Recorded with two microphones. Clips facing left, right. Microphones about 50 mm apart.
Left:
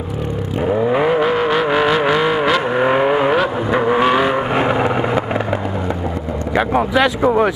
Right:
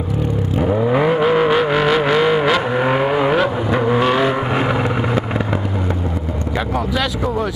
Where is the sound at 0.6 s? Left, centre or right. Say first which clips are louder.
Left 1 dB; centre.